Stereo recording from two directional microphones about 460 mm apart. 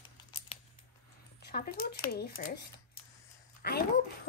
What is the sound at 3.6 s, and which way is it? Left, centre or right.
Speech, left.